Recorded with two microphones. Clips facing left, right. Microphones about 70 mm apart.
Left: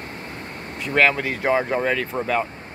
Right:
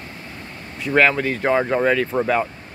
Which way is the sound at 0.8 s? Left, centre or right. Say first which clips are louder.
Right 2 dB; centre.